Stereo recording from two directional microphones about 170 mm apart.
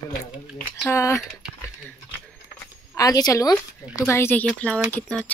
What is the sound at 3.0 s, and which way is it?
Speech, 20° left (ahead or behind).